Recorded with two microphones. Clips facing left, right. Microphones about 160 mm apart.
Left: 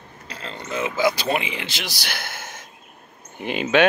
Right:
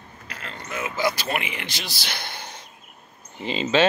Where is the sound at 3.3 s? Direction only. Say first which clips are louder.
Left 2 dB; 60° left (ahead or behind).